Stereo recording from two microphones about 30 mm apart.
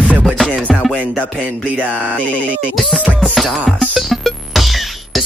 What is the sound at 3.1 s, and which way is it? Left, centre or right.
Music, left.